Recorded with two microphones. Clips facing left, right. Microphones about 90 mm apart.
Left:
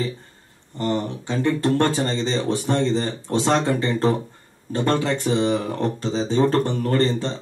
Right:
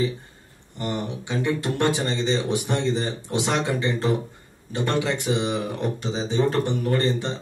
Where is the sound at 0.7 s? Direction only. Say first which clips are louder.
Left 5 dB; 15° right (ahead or behind).